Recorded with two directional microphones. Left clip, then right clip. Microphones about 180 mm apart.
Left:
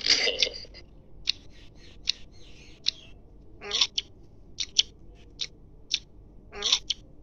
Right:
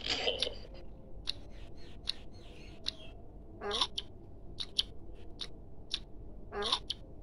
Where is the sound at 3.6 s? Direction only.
30° right (ahead or behind).